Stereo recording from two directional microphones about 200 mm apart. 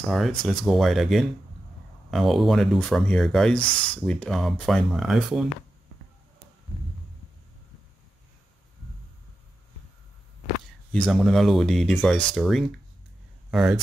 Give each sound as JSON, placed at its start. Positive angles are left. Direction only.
{"t": 0.1, "sound": "speech", "side_deg": 0}
{"t": 3.5, "sound": "speech", "side_deg": 25}
{"t": 4.0, "sound": "speech", "side_deg": 0}
{"t": 10.9, "sound": "speech", "side_deg": 0}